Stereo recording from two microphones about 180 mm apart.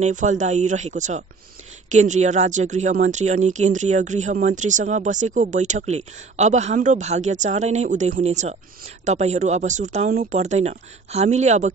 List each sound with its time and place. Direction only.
0.0 s speech: 45° right (ahead or behind)